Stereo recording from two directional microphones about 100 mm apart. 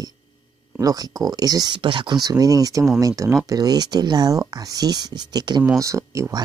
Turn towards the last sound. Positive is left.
turn(degrees=-30)  # may be behind; listen again after turning